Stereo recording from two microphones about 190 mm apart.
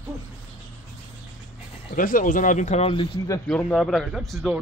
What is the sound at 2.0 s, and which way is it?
Speech, 45° left (ahead or behind).